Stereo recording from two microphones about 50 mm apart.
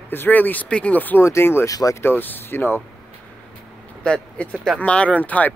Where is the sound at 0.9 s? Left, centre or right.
Left.